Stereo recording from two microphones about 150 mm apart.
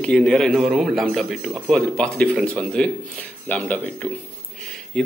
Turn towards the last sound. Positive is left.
turn(degrees=5)  # may be behind; listen again after turning